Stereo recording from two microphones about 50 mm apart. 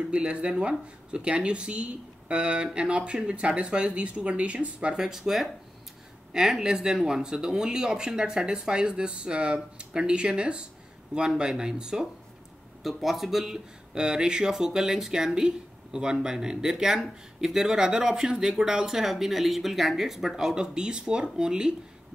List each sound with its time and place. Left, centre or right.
0.1 s speech: right
12.8 s speech: centre